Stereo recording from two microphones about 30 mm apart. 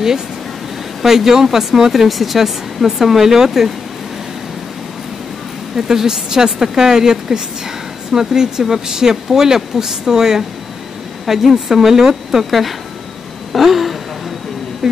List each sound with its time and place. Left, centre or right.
1.0 s speech: centre
1.9 s speech: centre
5.8 s a woman's voice: centre
12.3 s speech: centre
13.5 s a sound: centre